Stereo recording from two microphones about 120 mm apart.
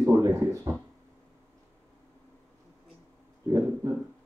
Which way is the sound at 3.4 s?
30° right (ahead or behind).